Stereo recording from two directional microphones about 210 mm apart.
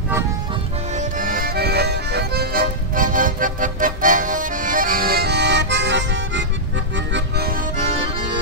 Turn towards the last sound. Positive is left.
turn(degrees=-50)  # may be behind; listen again after turning